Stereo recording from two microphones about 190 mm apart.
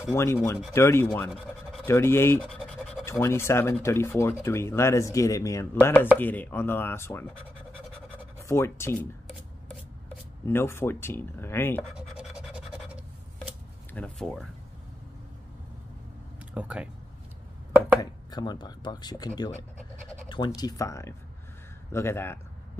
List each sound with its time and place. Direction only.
0.1 s speech: 15° left (ahead or behind)
2.4 s scratch: 5° left (ahead or behind)
3.1 s speech: 15° left (ahead or behind)
8.4 s speech: 15° left (ahead or behind)
10.4 s speech: 10° left (ahead or behind)
11.9 s scratch: 5° right (ahead or behind)
13.9 s speech: 5° left (ahead or behind)
16.5 s speech: 5° right (ahead or behind)
18.3 s speech: 20° left (ahead or behind)